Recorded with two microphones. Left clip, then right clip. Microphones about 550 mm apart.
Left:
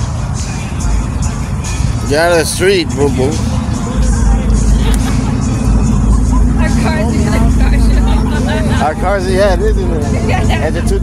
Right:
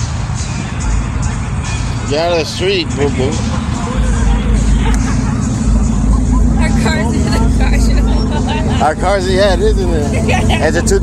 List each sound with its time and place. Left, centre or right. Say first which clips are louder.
2.0 s speech: left 4 dB; left
6.6 s vehicle: even; centre
8.5 s vehicle: right 1 dB; left
10.2 s speech: right 3 dB; centre